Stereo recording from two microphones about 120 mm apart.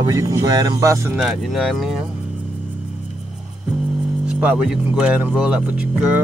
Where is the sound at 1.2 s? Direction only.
Centre (ahead or behind).